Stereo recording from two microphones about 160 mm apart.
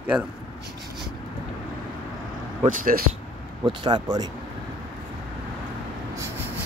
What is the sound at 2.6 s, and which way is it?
Speech, 60° right (ahead or behind).